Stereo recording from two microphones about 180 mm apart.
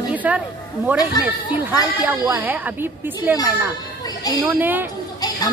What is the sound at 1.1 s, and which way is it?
Speech, 20° left (ahead or behind).